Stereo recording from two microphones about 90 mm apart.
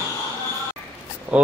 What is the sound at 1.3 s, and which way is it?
Speech, 15° right (ahead or behind).